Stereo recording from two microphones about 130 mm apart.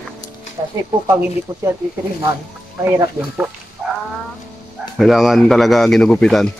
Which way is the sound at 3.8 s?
5° right (ahead or behind).